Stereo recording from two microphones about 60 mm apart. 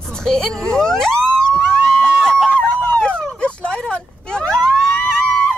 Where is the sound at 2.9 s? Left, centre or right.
Centre.